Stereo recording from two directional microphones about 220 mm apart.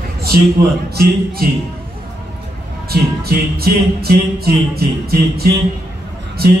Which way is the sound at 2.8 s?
45° right (ahead or behind).